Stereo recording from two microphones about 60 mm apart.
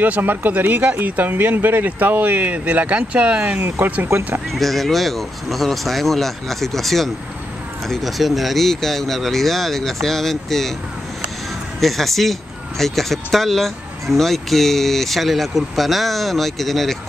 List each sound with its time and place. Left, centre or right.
0.0 s speech: right
4.5 s speech: centre
11.8 s speech: centre